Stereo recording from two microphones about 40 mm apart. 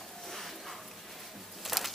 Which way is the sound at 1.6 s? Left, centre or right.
Centre.